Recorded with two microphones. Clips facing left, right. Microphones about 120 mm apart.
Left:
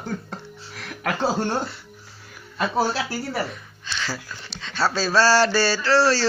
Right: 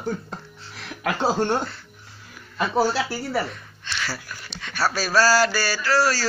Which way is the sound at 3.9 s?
15° left (ahead or behind).